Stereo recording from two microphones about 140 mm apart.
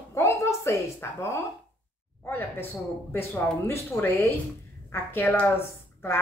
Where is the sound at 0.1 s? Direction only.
20° left (ahead or behind).